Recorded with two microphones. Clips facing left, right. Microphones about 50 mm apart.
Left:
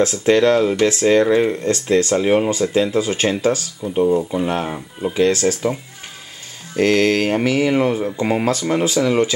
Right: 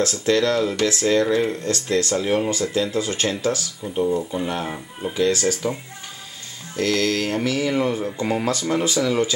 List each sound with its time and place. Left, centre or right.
0.0 s speech: centre
4.6 s speech: centre
6.8 s speech: left
8.5 s speech: centre